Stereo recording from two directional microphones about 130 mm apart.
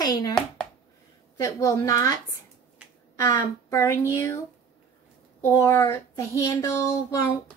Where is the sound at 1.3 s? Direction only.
20° left (ahead or behind).